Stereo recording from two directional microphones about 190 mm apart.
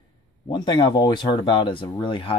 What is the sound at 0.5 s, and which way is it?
Speech, 25° left (ahead or behind).